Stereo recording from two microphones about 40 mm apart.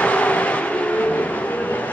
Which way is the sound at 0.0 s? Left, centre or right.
Left.